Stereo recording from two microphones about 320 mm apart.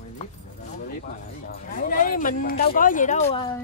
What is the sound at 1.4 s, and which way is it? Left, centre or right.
Speech, left.